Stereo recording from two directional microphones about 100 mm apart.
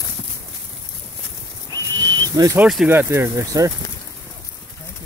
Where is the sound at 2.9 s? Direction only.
25° right (ahead or behind).